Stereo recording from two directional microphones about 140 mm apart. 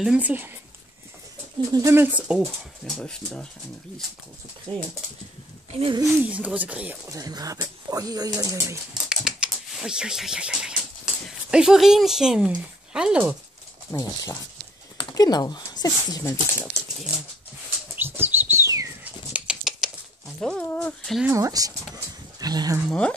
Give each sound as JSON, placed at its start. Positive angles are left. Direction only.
{"t": 0.0, "sound": "speech", "side_deg": -10}
{"t": 1.7, "sound": "speech", "side_deg": -20}
{"t": 4.7, "sound": "speech", "side_deg": -40}
{"t": 6.2, "sound": "speech", "side_deg": -10}
{"t": 7.1, "sound": "speech", "side_deg": -25}
{"t": 9.1, "sound": "typewriter", "side_deg": -5}
{"t": 11.2, "sound": "speech", "side_deg": -5}
{"t": 13.9, "sound": "speech", "side_deg": 25}
{"t": 17.9, "sound": "bird", "side_deg": -15}
{"t": 19.3, "sound": "a sound", "side_deg": -5}
{"t": 20.3, "sound": "speech", "side_deg": 5}
{"t": 21.3, "sound": "speech", "side_deg": -25}
{"t": 22.8, "sound": "speech", "side_deg": 10}